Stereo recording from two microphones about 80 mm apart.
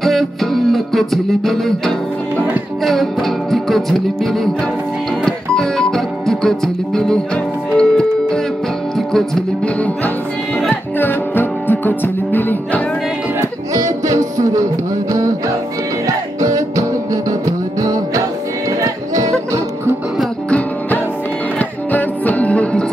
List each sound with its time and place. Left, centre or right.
0.0 s music: centre
2.8 s music: centre
10.7 s music: left
13.4 s music: right
16.3 s music: right
20.4 s music: centre